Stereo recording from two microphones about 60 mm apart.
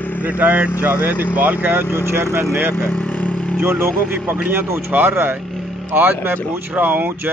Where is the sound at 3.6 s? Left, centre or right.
Right.